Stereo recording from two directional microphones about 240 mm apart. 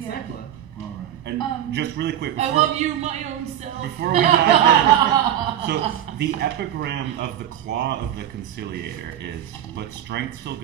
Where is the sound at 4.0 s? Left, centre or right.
Right.